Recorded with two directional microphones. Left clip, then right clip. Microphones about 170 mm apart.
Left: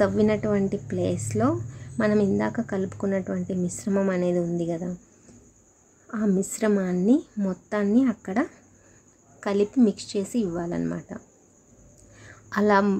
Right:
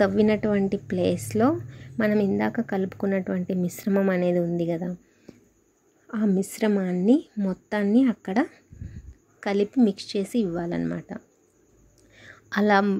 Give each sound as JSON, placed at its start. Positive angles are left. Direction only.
{"t": 0.0, "sound": "a woman's voice", "side_deg": -15}
{"t": 6.0, "sound": "a woman's voice", "side_deg": -20}
{"t": 12.2, "sound": "a sound", "side_deg": -15}